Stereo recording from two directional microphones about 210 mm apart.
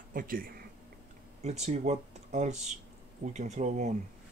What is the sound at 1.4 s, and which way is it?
Speech, 30° right (ahead or behind).